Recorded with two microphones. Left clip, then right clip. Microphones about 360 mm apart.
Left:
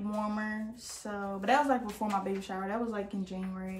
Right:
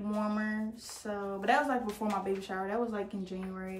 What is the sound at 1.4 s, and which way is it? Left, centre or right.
Speech, centre.